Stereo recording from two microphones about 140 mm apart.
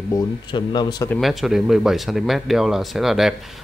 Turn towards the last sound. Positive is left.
turn(degrees=0)  # may be behind; listen again after turning